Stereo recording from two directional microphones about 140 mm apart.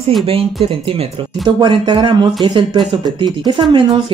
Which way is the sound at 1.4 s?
35° right (ahead or behind).